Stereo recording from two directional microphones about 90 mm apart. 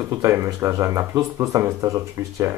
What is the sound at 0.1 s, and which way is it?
Speech, 35° right (ahead or behind).